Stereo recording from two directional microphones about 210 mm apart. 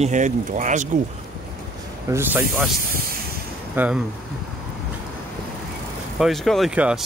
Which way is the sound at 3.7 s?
5° right (ahead or behind).